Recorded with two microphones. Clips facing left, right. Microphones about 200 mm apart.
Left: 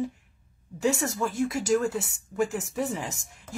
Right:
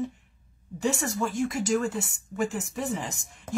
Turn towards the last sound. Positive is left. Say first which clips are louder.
# right 1 dB
turn(degrees=0)  # may be behind; listen again after turning